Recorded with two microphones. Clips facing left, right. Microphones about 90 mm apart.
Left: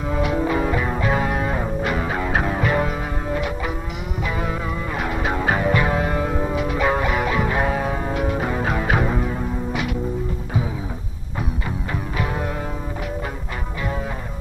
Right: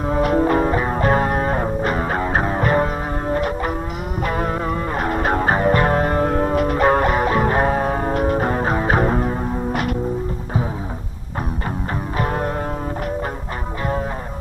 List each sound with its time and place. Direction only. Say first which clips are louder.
0.1 s music: right 5 dB; 40° right (ahead or behind)